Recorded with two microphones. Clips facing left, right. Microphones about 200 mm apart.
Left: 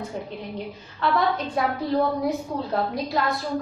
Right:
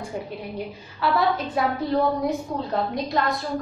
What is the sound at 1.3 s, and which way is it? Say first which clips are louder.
A woman's voice: right 1 dB; centre (ahead or behind).